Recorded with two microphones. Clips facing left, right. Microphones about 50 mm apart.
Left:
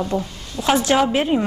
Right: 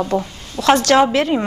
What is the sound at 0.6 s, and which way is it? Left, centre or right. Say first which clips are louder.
Speech: right 5 dB; right.